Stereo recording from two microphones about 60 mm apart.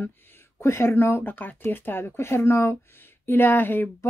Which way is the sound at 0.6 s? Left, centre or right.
Left.